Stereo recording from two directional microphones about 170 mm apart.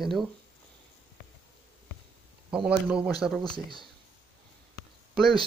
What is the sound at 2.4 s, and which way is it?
Speech, 5° right (ahead or behind).